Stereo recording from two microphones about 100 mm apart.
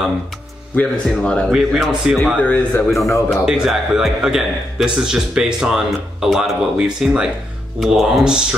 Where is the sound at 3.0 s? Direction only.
30° left (ahead or behind).